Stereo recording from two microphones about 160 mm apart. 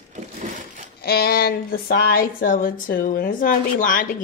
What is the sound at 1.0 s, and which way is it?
Speech, 80° left.